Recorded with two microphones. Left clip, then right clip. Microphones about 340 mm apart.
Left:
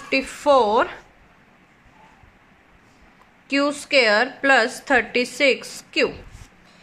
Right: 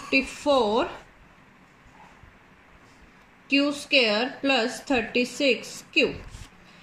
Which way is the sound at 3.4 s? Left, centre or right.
Centre.